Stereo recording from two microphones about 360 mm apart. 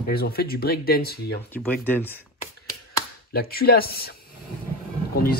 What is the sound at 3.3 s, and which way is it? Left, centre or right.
Speech, left.